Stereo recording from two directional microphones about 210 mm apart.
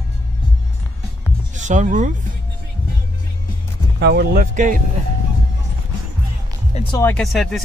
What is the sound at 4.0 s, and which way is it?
Speech, 45° right (ahead or behind).